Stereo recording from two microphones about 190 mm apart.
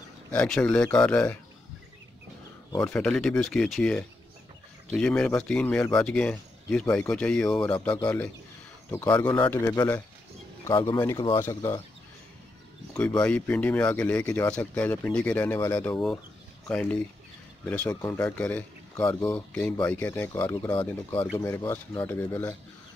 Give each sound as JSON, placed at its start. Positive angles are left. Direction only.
{"t": 0.3, "sound": "speech", "side_deg": 5}
{"t": 2.7, "sound": "speech", "side_deg": 10}
{"t": 9.2, "sound": "speech", "side_deg": 10}
{"t": 13.2, "sound": "speech", "side_deg": 5}